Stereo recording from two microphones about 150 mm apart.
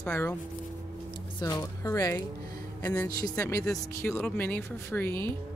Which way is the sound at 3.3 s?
20° left (ahead or behind).